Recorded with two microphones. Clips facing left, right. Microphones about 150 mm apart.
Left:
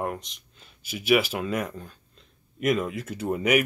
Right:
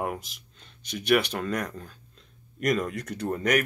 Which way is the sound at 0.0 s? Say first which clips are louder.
Left 1 dB; 5° right (ahead or behind).